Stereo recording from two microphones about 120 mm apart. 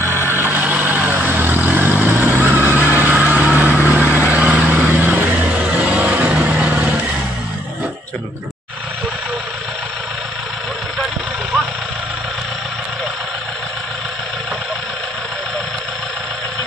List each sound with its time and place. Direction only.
0.2 s vehicle: 20° right (ahead or behind)